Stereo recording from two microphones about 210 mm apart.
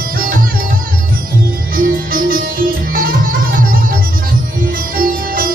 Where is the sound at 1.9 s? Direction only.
45° right (ahead or behind).